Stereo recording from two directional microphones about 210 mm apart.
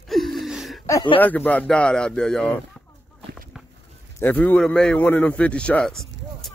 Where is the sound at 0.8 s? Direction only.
20° left (ahead or behind).